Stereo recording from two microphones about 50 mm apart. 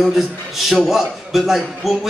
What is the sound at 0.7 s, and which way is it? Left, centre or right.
A man's voice, centre.